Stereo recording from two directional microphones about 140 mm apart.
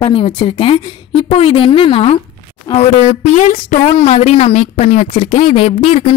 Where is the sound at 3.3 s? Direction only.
60° left (ahead or behind).